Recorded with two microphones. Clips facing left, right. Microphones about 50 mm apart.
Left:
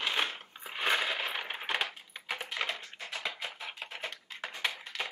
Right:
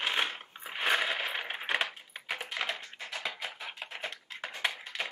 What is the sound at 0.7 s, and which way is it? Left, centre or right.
Coin, centre.